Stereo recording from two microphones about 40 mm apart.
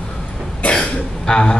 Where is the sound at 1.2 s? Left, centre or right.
Centre.